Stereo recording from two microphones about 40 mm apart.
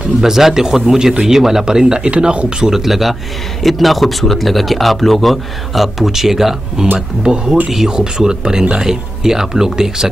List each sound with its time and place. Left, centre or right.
0.2 s speech: centre; by 2.4 s right
2.6 s a man's voice: centre
7.3 s speech: right